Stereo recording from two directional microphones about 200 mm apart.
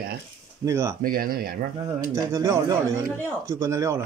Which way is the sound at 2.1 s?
15° right (ahead or behind).